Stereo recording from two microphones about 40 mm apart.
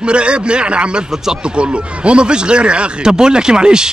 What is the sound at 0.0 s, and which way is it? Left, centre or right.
Speech, right.